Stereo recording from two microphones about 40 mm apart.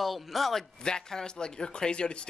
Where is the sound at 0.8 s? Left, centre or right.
Centre.